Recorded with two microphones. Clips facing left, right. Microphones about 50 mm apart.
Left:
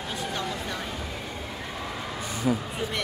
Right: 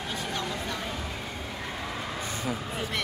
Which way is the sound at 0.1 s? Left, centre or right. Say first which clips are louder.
Left 2 dB; centre.